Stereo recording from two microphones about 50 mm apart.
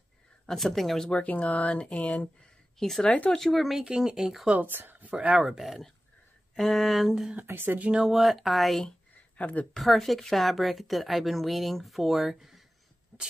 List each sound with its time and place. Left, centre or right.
0.5 s speech: centre
1.1 s speech: left
2.8 s a woman's voice: centre
3.8 s speech: centre
4.6 s speech: right
5.1 s speech: centre
5.4 s a woman's voice: centre
7.4 s speech: right
7.8 s speech: centre
8.1 s a woman's voice: centre
9.4 s speech: left
9.8 s a woman's voice: centre
13.1 s sneeze: right